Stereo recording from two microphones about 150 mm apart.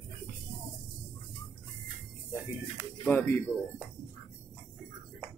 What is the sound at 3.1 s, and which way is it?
Speech, 15° left (ahead or behind).